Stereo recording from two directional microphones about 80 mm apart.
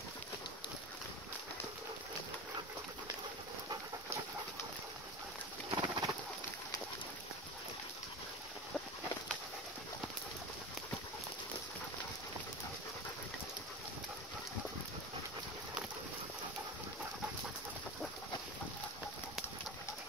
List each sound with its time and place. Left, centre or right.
5.7 s bird: right